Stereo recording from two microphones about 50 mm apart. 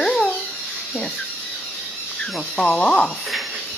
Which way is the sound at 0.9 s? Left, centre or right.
Left.